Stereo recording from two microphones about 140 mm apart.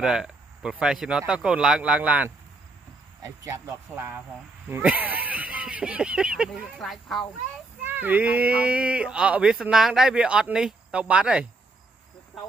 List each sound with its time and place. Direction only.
0.0 s speech: 5° right (ahead or behind)
3.2 s speech: 20° right (ahead or behind); by 7.2 s centre (ahead or behind)
7.8 s speech: 15° right (ahead or behind)